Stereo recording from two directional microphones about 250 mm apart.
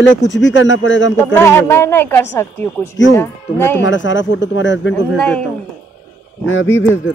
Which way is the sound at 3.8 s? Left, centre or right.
Left.